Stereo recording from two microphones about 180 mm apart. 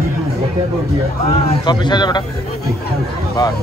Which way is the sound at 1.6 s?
25° left (ahead or behind).